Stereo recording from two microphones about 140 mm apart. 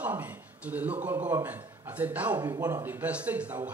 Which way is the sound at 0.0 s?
15° right (ahead or behind).